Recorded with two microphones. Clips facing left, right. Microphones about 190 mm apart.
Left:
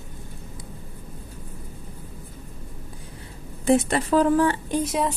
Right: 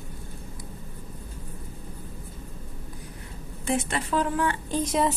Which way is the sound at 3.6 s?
40° left (ahead or behind).